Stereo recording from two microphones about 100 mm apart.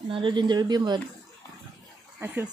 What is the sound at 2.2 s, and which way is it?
Speech, 25° right (ahead or behind).